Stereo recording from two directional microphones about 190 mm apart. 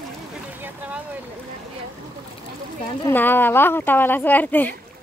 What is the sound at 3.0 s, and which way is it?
Speech, 10° left (ahead or behind).